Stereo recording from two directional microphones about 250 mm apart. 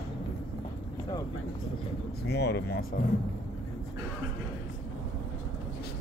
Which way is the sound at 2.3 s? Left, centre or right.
Left.